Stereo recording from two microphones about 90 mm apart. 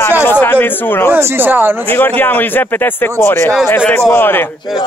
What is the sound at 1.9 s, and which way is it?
Speech, 20° left (ahead or behind).